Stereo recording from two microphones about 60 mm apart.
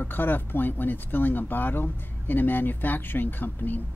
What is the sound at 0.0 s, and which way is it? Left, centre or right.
Speech, left.